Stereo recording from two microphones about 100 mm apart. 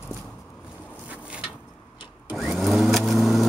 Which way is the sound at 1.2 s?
10° right (ahead or behind).